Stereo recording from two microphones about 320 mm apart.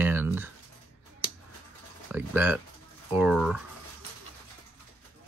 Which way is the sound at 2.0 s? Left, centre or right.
Centre.